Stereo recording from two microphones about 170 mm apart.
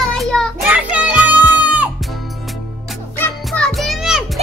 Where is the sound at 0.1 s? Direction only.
5° left (ahead or behind).